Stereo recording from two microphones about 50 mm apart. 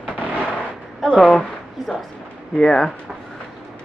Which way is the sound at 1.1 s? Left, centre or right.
Centre.